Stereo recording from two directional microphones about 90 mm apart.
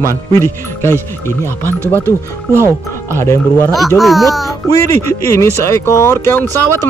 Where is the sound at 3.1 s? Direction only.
30° left (ahead or behind).